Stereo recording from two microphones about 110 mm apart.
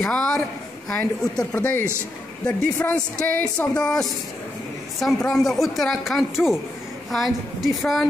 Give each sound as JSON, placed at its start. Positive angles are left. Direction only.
{"t": 0.0, "sound": "speech", "side_deg": 10}
{"t": 1.5, "sound": "speech", "side_deg": 20}